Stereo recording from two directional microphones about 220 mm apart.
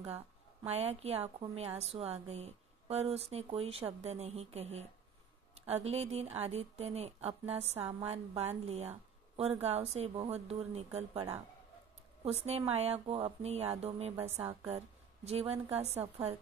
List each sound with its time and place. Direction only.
0.7 s speech: 30° right (ahead or behind)
11.1 s a woman's voice: 10° right (ahead or behind)
12.4 s speech: 30° right (ahead or behind)
14.1 s a woman's voice: 10° right (ahead or behind)
15.2 s speech: 30° right (ahead or behind)